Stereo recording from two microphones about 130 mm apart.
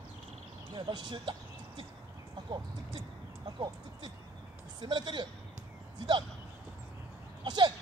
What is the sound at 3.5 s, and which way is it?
Speech, 35° right (ahead or behind).